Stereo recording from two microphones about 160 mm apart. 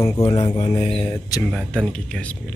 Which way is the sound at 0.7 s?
40° left (ahead or behind).